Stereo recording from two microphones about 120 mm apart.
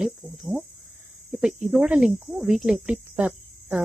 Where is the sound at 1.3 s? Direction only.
5° right (ahead or behind).